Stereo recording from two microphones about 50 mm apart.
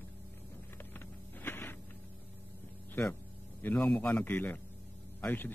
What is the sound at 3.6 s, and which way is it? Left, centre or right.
A man's voice, left.